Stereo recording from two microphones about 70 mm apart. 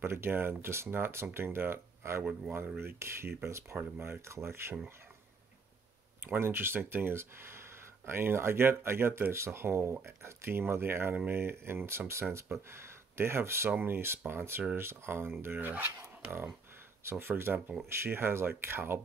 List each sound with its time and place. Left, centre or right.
0.0 s speech: right
6.2 s speech: right
17.0 s speech: right